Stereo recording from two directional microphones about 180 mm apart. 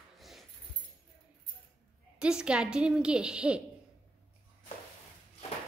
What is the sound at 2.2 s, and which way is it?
A woman's voice, 5° right (ahead or behind).